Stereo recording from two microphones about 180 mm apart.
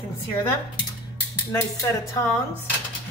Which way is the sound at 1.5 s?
20° left (ahead or behind).